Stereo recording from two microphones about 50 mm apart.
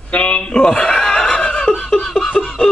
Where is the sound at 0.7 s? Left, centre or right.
Centre.